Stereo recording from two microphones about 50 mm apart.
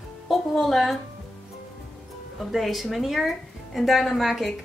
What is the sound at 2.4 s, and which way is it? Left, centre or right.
Speech, centre.